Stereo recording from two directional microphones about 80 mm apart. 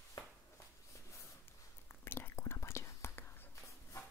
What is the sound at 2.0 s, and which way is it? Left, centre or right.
Whispering, left.